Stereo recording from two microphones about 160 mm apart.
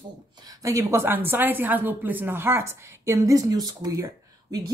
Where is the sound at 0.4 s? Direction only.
20° right (ahead or behind).